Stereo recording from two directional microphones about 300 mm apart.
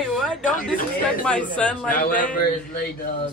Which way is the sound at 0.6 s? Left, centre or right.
Left.